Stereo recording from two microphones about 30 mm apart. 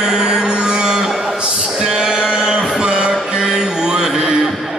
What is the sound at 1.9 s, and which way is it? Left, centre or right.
Music, right.